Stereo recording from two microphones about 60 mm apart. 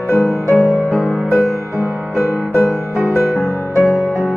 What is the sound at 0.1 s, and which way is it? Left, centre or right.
Music, left.